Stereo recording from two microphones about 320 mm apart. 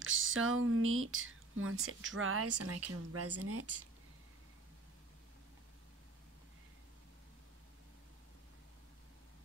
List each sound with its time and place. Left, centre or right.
0.0 s speech: right